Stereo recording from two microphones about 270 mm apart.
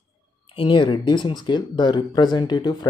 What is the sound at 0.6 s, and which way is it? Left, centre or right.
Speech, centre.